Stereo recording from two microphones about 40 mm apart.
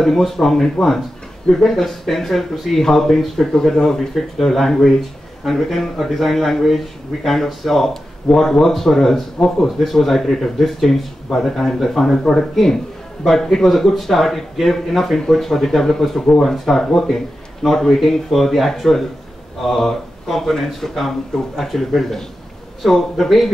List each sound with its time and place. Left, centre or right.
0.0 s a man's voice: centre